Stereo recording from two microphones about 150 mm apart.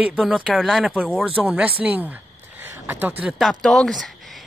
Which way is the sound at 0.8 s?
5° right (ahead or behind).